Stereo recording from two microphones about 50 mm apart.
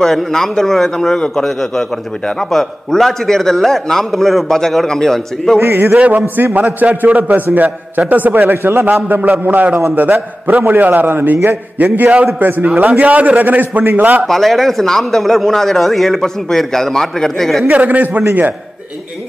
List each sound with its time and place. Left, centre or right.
0.0 s speech: centre
5.6 s a man's voice: right
5.9 s a man's voice: right
6.2 s a man's voice: right
8.5 s a man's voice: right
8.8 s a man's voice: right
11.8 s a man's voice: right
14.2 s speech: centre
17.6 s a man's voice: right